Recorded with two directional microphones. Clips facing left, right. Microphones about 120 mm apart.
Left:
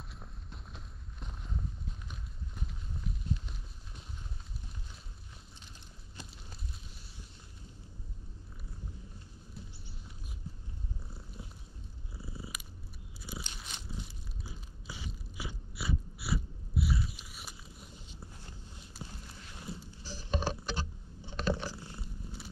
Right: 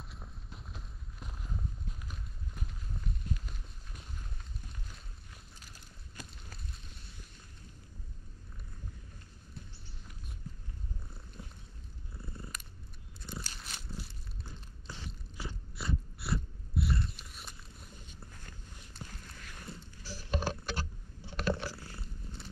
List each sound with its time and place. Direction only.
0.0 s clip-clop: centre (ahead or behind)
11.4 s purr: 5° left (ahead or behind)
13.2 s biting: 5° left (ahead or behind)
18.9 s walk: 5° left (ahead or behind)
20.0 s patter: 20° left (ahead or behind)
21.3 s boat: 20° left (ahead or behind)
22.0 s purr: 5° left (ahead or behind)